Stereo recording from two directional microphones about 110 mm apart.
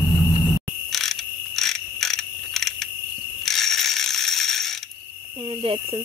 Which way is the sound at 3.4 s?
5° left (ahead or behind).